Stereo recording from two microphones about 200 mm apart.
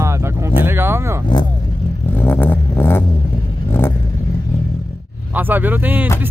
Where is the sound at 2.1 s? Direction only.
10° left (ahead or behind).